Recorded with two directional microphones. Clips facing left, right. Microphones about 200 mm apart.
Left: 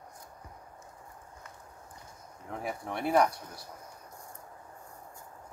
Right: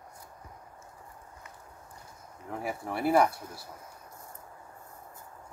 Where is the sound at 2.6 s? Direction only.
5° right (ahead or behind).